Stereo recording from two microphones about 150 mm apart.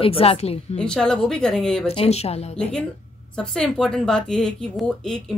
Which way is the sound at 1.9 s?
45° left (ahead or behind).